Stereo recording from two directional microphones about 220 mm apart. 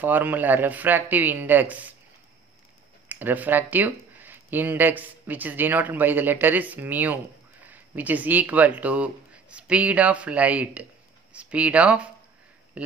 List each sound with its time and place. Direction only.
0.0 s speech: 10° right (ahead or behind)
3.1 s speech: 10° right (ahead or behind)
12.8 s a sound: 5° right (ahead or behind)